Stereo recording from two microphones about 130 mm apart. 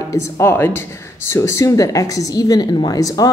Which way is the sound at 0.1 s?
20° left (ahead or behind).